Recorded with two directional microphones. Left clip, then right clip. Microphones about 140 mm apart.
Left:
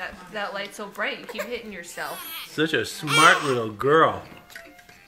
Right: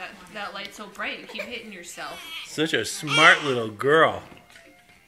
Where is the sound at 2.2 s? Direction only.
35° left (ahead or behind).